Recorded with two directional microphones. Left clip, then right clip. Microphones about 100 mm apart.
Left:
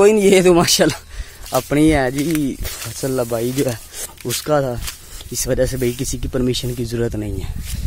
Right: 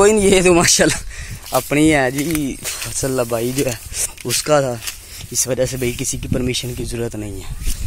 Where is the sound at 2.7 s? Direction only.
20° left (ahead or behind).